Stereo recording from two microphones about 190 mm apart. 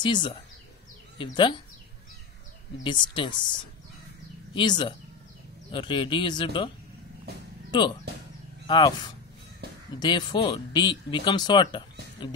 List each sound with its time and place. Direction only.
0.0 s speech: 25° left (ahead or behind)
2.8 s speech: 25° left (ahead or behind)
4.6 s speech: 25° left (ahead or behind)
7.7 s speech: 25° left (ahead or behind)